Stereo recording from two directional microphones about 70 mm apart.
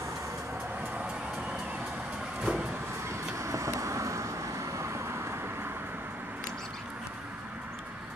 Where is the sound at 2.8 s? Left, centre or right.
Right.